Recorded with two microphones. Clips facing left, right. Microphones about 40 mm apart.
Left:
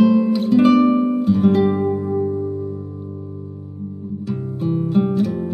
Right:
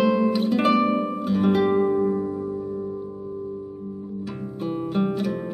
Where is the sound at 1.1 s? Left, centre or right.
Centre.